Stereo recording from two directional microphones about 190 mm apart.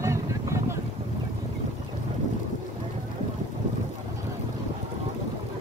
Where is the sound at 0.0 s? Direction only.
15° right (ahead or behind).